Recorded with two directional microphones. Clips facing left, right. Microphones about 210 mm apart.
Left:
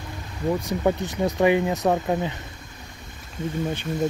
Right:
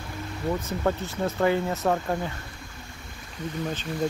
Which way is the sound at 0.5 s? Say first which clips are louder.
Left 4 dB; 15° left (ahead or behind).